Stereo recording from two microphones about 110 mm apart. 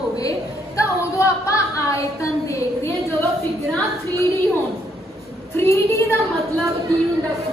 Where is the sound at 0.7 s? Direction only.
30° left (ahead or behind).